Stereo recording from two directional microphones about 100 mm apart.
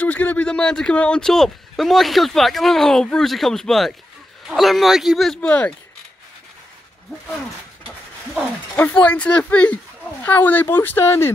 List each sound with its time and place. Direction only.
0.0 s speech: 15° left (ahead or behind)
8.7 s speech: 15° left (ahead or behind)